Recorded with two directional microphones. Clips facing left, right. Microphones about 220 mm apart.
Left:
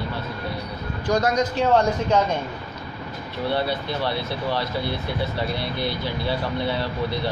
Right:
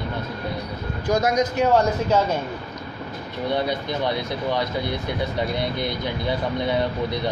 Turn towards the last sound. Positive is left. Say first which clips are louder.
# right 2 dB
turn(degrees=-20)  # may be behind; listen again after turning